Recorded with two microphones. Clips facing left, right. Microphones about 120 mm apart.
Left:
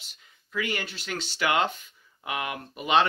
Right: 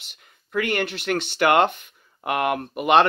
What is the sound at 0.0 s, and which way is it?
Speech, 60° right (ahead or behind).